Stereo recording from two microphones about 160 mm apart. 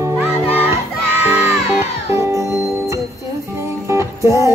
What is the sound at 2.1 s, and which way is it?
Music, 15° right (ahead or behind).